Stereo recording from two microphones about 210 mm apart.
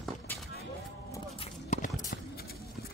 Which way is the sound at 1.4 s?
35° left (ahead or behind).